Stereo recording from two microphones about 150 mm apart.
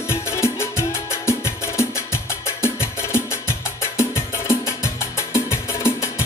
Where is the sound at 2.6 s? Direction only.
15° left (ahead or behind).